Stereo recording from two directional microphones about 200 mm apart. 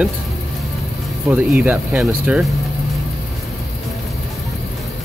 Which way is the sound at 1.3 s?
5° right (ahead or behind).